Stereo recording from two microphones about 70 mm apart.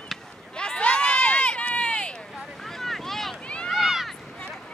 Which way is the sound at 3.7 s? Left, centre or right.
Centre.